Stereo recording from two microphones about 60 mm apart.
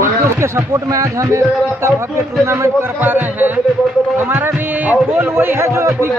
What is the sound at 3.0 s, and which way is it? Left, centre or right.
Speech, right.